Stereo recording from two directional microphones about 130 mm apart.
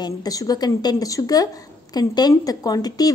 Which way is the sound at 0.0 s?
30° left (ahead or behind).